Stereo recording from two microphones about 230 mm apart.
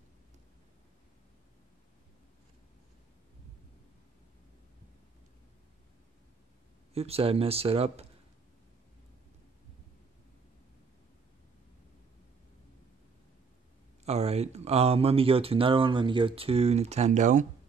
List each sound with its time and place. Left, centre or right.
6.9 s speech: right
14.0 s speech: right